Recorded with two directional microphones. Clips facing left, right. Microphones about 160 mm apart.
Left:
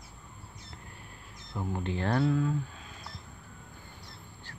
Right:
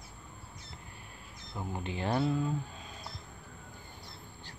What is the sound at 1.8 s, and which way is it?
Speech, 10° right (ahead or behind).